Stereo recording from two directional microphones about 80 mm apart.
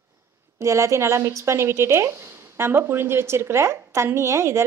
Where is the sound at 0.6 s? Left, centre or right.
Right.